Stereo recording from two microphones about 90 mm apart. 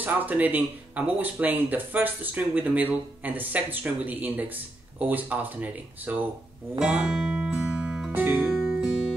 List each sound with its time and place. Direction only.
0.0 s speech: 20° right (ahead or behind)
6.8 s music: 10° right (ahead or behind)
8.1 s music: 20° right (ahead or behind)